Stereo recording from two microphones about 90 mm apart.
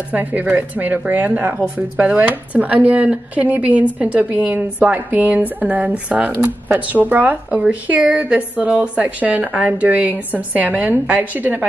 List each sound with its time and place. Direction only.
0.1 s a woman's voice: 20° right (ahead or behind)